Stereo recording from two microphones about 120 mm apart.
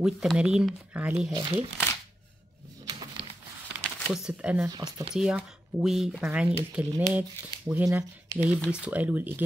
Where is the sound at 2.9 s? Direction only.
40° right (ahead or behind).